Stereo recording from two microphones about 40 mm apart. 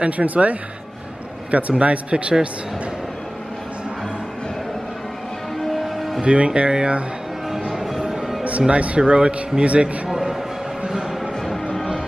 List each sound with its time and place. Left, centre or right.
0.0 s a man's voice: right
5.6 s music: centre
6.2 s speech: right
7.4 s music: centre
8.1 s a sound: centre
8.5 s speech: right
10.0 s music: centre